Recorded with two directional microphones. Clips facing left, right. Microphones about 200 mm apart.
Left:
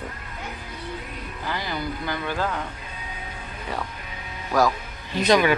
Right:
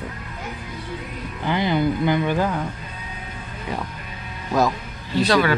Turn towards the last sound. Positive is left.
turn(degrees=15)  # may be behind; listen again after turning